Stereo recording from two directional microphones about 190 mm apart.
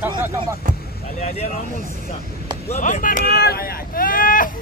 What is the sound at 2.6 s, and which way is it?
Speech, 35° left (ahead or behind).